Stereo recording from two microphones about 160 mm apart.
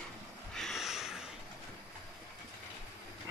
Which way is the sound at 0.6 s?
Centre (ahead or behind).